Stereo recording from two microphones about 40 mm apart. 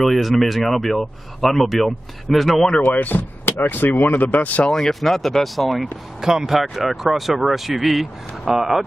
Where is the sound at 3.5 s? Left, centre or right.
Left.